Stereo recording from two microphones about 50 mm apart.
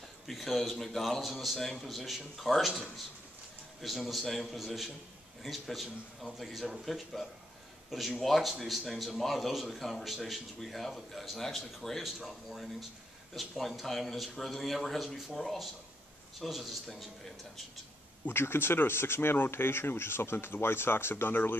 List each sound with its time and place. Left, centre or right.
0.3 s speech: centre
3.8 s speech: centre
18.3 s speech: left